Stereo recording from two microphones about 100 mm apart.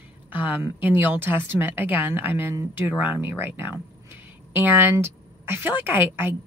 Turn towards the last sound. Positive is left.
turn(degrees=-20)  # may be behind; listen again after turning